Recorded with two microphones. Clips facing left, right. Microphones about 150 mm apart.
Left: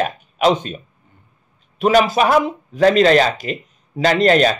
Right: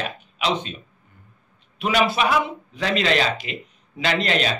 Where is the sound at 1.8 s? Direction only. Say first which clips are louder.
Left 6 dB; 40° left (ahead or behind).